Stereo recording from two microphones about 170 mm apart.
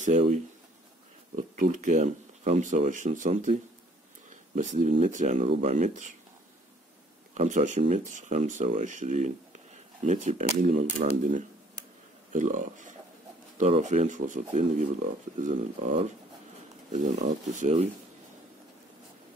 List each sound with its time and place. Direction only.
0.0 s speech: 45° right (ahead or behind)
4.6 s speech: 45° right (ahead or behind)
7.3 s speech: 45° right (ahead or behind)